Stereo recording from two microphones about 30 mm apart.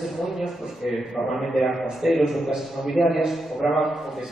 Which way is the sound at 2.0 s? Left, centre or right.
Centre.